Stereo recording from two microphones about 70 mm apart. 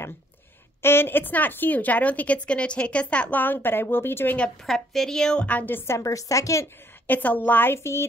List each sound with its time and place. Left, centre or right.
0.8 s speech: left
4.6 s a woman's voice: centre; by 5.9 s left
5.9 s speech: left
7.1 s speech: left